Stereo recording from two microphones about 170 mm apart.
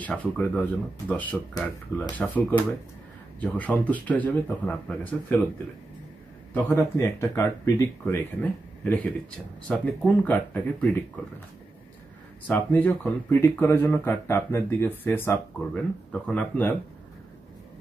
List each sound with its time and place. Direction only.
0.0 s speech: 10° left (ahead or behind)
1.5 s speech: 25° left (ahead or behind)
2.1 s speech: 10° left (ahead or behind)
6.5 s speech: 15° left (ahead or behind)
12.4 s speech: 10° left (ahead or behind)